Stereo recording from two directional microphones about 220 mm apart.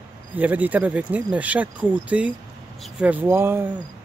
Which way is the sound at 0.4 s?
5° right (ahead or behind).